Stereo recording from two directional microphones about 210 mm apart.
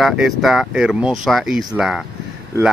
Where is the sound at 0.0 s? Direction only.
Centre (ahead or behind).